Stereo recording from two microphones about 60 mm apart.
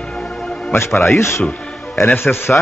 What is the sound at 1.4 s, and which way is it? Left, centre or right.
Music, centre.